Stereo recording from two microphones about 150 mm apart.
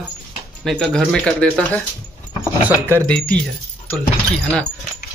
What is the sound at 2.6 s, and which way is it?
Speech, 15° right (ahead or behind).